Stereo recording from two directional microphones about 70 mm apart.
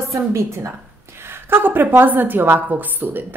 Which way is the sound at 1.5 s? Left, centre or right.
Right.